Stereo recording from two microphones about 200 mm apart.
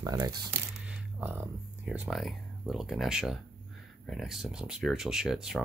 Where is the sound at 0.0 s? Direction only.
15° right (ahead or behind).